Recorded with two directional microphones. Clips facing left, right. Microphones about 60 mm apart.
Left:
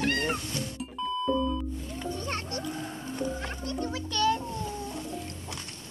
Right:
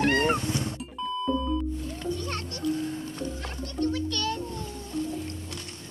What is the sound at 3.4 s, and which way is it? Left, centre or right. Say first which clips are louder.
Music: right 2 dB; centre.